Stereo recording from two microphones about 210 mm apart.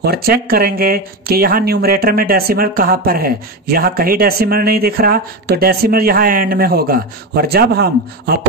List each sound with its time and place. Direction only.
0.0 s speech: 50° right (ahead or behind)